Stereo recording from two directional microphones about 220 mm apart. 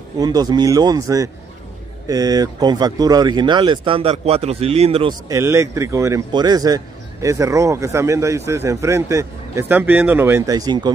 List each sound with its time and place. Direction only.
0.2 s speech: 15° right (ahead or behind)
5.3 s speech: 10° right (ahead or behind)